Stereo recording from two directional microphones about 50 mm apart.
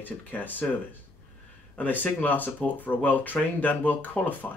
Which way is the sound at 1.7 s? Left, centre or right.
Left.